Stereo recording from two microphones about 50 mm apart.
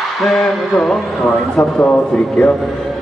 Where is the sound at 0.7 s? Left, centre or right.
Left.